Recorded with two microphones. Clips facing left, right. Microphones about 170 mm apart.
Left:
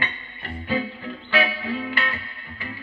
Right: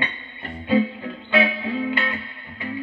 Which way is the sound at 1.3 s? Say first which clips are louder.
Right 3 dB; 20° right (ahead or behind).